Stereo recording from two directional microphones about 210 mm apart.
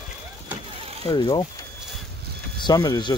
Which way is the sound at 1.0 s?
25° left (ahead or behind).